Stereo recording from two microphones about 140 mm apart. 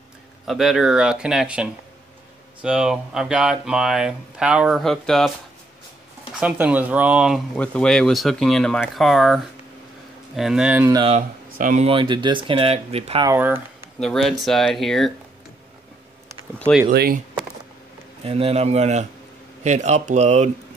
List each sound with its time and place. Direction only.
0.5 s speech: centre (ahead or behind)
6.4 s speech: 10° right (ahead or behind)
7.5 s speech: 10° left (ahead or behind); by 10.9 s 10° right (ahead or behind)
11.5 s speech: 75° right (ahead or behind)
11.8 s speech: 40° right (ahead or behind)
13.4 s speech: 15° right (ahead or behind)
13.9 s speech: centre (ahead or behind)
18.2 s a man's voice: 45° right (ahead or behind)